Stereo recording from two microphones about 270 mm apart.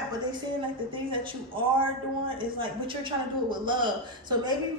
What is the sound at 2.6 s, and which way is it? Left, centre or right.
A woman's voice, centre.